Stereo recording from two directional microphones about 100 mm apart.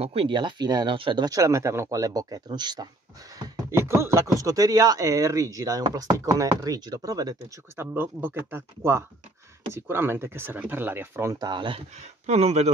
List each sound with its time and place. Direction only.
0.0 s speech: 80° right
0.3 s speech: 50° right (ahead or behind)
1.2 s speech: 35° right (ahead or behind)
3.7 s speech: 25° right (ahead or behind)
7.7 s speech: 25° right (ahead or behind)
11.3 s speech: 50° right (ahead or behind)
12.3 s speech: 90° right